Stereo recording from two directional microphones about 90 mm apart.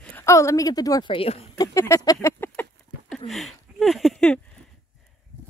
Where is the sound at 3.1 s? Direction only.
Centre (ahead or behind).